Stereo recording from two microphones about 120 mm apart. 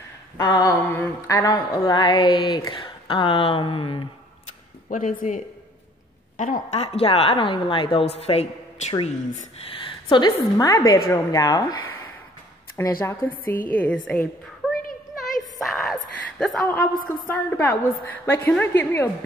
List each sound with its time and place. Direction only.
0.4 s a woman's voice: 35° left (ahead or behind)
5.0 s a woman's voice: 90° left
6.3 s a woman's voice: 75° left (ahead or behind); by 8.5 s 55° left (ahead or behind)
9.0 s a woman's voice: 90° left
9.8 s a woman's voice: 45° left (ahead or behind)
12.7 s a woman's voice: 20° left (ahead or behind)
14.6 s a sound: 5° right (ahead or behind)
17.3 s a woman's voice: 15° left (ahead or behind)